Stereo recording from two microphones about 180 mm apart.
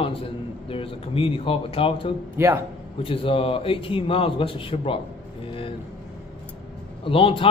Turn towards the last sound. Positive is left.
turn(degrees=30)  # may be behind; listen again after turning